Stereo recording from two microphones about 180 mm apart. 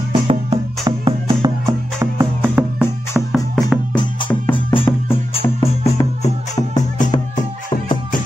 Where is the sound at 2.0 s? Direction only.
10° right (ahead or behind).